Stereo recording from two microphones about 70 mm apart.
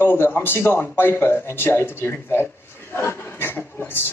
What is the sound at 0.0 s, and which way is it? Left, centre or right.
Speech, left.